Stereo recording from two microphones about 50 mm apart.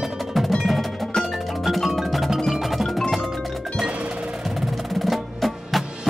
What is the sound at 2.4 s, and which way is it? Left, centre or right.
Percussion, centre.